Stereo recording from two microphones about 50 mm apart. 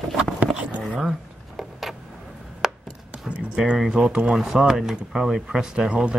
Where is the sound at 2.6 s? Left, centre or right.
Centre.